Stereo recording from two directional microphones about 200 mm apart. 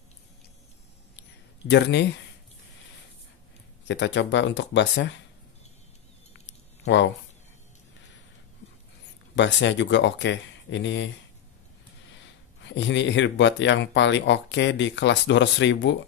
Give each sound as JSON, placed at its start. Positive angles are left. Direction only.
{"t": 1.7, "sound": "speech", "side_deg": 60}
{"t": 3.8, "sound": "speech", "side_deg": 65}
{"t": 9.3, "sound": "speech", "side_deg": 65}
{"t": 12.6, "sound": "speech", "side_deg": 65}